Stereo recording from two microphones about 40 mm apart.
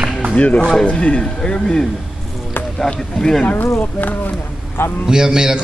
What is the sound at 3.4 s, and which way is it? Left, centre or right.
Speech, left.